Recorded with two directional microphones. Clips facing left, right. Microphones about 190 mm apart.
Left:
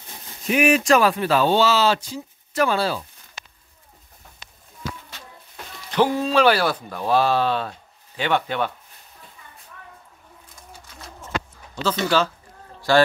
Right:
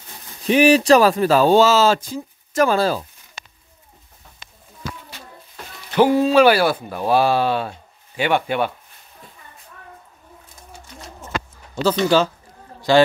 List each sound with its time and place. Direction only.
0.5 s speech: 30° right (ahead or behind)
5.9 s speech: 10° right (ahead or behind)
11.7 s speech: 35° right (ahead or behind)
12.9 s speech: 15° right (ahead or behind)